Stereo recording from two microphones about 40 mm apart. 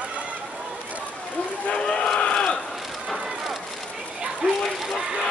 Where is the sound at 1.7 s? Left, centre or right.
Left.